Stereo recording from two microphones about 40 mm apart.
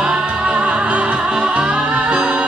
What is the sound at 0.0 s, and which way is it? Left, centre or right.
Music, right.